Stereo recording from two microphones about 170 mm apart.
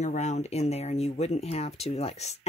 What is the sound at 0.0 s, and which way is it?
Speech, 45° left (ahead or behind).